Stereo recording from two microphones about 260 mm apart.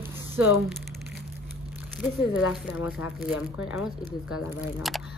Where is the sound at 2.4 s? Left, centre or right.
Left.